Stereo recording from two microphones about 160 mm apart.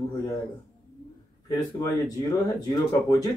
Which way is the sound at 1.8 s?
20° left (ahead or behind).